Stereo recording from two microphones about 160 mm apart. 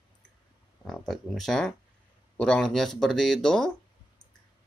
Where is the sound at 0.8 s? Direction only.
Centre (ahead or behind).